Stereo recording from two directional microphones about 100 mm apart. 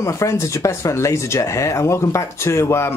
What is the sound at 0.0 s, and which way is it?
Speech, 30° left (ahead or behind).